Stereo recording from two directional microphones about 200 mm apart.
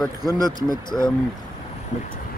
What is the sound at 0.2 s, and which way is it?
Speech, 20° right (ahead or behind).